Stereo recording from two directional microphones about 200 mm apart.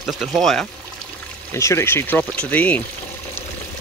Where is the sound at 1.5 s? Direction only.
15° left (ahead or behind).